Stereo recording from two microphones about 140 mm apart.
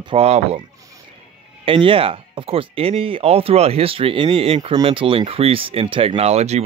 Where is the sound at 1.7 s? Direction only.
40° right (ahead or behind).